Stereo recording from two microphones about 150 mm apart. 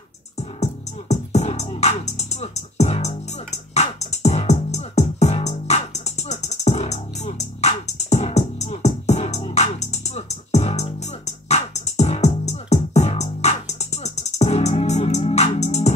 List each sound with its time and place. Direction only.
0.4 s music: 45° left (ahead or behind)